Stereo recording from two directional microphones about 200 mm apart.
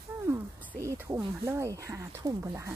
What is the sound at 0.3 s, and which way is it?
Speech, 15° right (ahead or behind).